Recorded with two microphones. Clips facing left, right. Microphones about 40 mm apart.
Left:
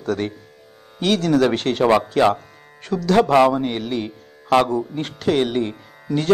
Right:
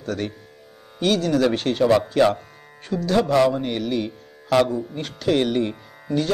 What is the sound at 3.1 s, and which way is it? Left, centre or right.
Speech, left.